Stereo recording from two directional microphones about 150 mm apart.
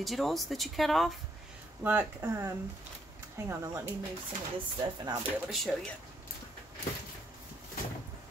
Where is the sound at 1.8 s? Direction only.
15° right (ahead or behind).